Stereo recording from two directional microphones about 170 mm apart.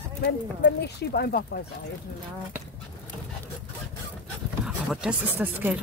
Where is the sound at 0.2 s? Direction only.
80° left.